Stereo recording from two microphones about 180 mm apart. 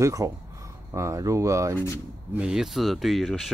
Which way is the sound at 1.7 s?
15° left (ahead or behind).